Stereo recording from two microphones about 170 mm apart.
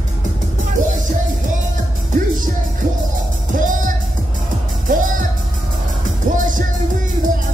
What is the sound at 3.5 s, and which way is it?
Music, 50° right (ahead or behind).